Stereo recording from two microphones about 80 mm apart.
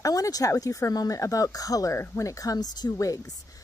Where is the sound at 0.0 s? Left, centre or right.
Left.